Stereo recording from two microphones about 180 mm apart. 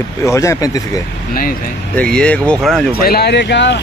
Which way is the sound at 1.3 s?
55° left (ahead or behind).